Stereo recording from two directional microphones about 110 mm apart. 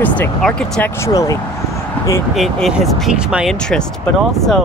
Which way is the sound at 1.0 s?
30° left (ahead or behind).